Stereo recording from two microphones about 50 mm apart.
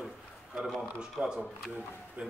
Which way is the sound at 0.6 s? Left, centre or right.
Centre.